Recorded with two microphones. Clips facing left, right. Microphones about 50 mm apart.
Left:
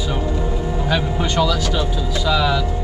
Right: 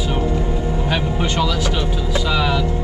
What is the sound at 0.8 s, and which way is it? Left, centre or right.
Speech, centre.